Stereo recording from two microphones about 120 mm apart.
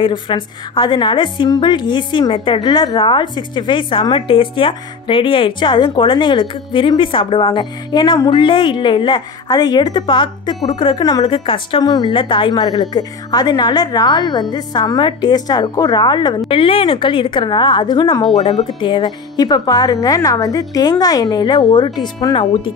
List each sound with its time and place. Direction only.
0.0 s a woman's voice: 45° left (ahead or behind)
11.2 s a woman's voice: 45° left (ahead or behind)
16.4 s a woman's voice: 50° left (ahead or behind)